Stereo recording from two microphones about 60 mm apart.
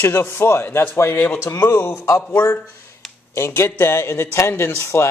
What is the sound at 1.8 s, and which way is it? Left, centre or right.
Speech, left.